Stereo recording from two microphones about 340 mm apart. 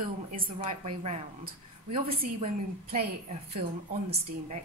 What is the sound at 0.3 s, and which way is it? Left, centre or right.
A woman's voice, right.